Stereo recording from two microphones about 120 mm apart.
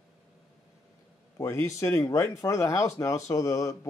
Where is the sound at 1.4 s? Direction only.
25° left (ahead or behind).